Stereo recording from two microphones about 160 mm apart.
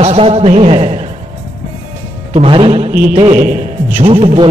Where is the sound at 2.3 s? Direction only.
35° right (ahead or behind).